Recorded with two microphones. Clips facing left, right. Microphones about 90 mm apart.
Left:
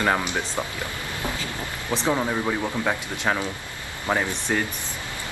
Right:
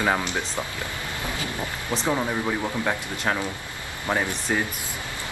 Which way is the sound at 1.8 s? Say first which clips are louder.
Left 2 dB; 20° left (ahead or behind).